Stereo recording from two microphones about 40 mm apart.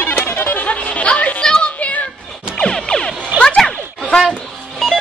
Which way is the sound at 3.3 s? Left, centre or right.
Right.